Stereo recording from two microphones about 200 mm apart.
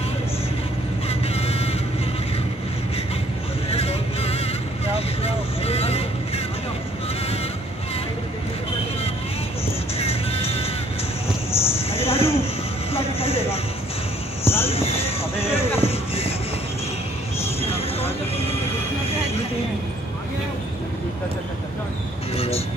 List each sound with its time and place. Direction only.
1.0 s vehicle: 30° left (ahead or behind)
3.7 s vehicle: 30° left (ahead or behind)
9.9 s music: 30° left (ahead or behind)
11.5 s a sound: 10° left (ahead or behind)
11.9 s a sound: 30° left (ahead or behind)
14.4 s basketball bounce: 10° left (ahead or behind)
14.7 s a sound: 30° left (ahead or behind)
15.8 s music: 30° left (ahead or behind)
17.6 s vehicle: 30° left (ahead or behind)